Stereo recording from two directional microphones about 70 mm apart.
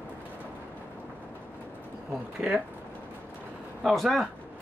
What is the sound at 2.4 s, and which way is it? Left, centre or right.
Speech, centre.